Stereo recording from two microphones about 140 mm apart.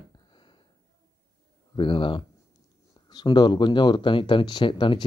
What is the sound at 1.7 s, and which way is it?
Speech, 35° left (ahead or behind).